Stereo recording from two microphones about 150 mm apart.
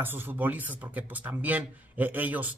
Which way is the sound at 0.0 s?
15° right (ahead or behind).